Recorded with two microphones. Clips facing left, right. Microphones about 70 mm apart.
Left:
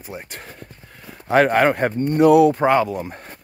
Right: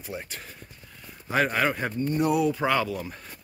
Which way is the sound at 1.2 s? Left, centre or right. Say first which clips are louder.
Left 9 dB; left.